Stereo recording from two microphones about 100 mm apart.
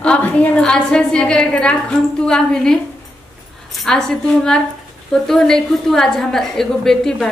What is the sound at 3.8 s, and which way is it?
A woman's voice, 5° left (ahead or behind).